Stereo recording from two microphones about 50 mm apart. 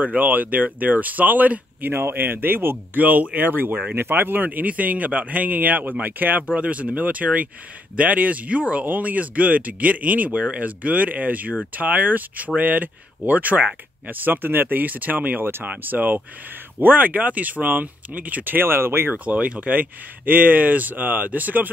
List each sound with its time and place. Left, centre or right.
0.0 s speech: right
3.9 s speech: right
6.4 s speech: right
19.1 s speech: right